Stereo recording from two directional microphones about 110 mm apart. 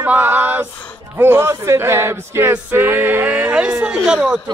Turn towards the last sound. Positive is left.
turn(degrees=-10)  # may be behind; listen again after turning